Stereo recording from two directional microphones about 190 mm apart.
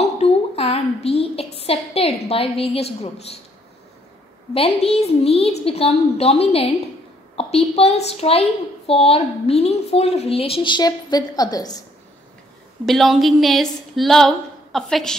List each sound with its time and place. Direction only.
0.2 s a sound: 30° left (ahead or behind)
4.6 s a woman's voice: 30° left (ahead or behind)
12.8 s a woman's voice: centre (ahead or behind)